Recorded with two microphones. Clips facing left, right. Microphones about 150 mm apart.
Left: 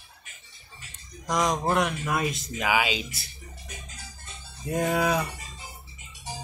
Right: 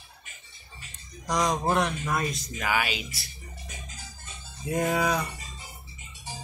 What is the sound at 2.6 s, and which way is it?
Speech, 15° left (ahead or behind).